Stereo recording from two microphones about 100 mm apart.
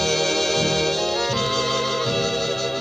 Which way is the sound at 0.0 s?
Centre (ahead or behind).